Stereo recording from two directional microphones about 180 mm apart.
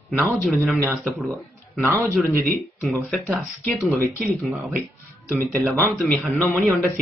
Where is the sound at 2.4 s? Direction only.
5° left (ahead or behind).